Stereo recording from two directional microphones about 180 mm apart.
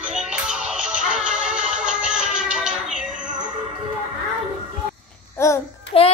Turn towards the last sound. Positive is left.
turn(degrees=30)  # may be behind; listen again after turning